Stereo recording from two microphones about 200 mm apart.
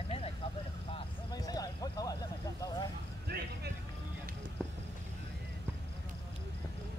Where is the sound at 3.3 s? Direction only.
50° right (ahead or behind).